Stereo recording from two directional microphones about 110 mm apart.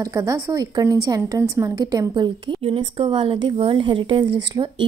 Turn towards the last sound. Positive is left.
turn(degrees=-45)  # may be behind; listen again after turning